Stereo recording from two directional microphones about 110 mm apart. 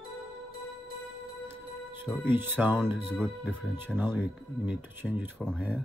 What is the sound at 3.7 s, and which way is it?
Speech, 20° right (ahead or behind).